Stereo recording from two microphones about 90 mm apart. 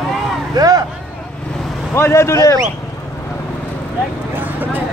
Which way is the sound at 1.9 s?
30° left (ahead or behind).